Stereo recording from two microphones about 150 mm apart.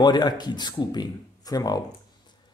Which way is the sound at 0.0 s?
30° left (ahead or behind).